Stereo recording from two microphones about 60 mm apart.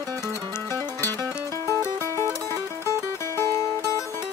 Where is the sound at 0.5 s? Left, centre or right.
Left.